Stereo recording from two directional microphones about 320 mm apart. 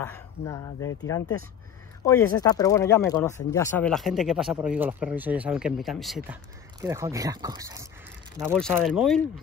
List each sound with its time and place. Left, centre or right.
0.0 s speech: centre